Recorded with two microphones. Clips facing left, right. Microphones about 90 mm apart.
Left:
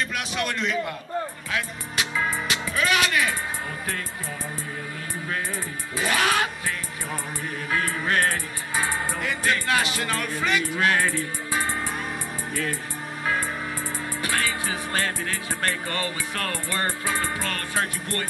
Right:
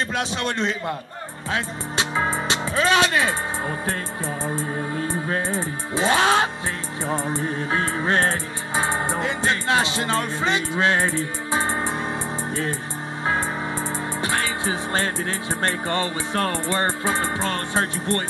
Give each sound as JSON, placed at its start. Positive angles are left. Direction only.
{"t": 0.1, "sound": "music", "side_deg": -30}
{"t": 1.5, "sound": "speech", "side_deg": -30}
{"t": 4.6, "sound": "music", "side_deg": -30}
{"t": 14.2, "sound": "music", "side_deg": -25}